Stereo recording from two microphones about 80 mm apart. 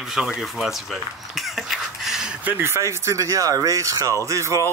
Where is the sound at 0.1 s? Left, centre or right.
Centre.